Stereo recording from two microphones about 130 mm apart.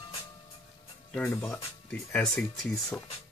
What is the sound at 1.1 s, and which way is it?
Speech, 5° left (ahead or behind).